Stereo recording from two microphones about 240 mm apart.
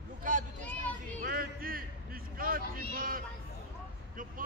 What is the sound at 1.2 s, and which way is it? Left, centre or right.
Music, right.